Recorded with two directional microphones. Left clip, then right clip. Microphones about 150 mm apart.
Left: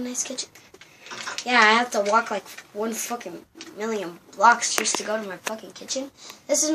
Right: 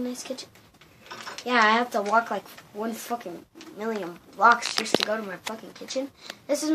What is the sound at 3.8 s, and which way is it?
Speech, 35° right (ahead or behind).